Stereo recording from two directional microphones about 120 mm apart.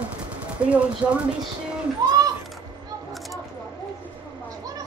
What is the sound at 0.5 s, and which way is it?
Speech, 10° right (ahead or behind).